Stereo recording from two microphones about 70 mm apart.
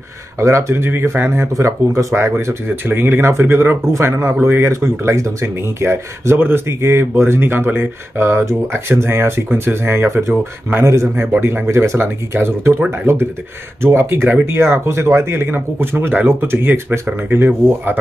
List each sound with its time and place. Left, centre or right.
0.4 s speech: right
2.4 s speech: right
11.7 s speech: right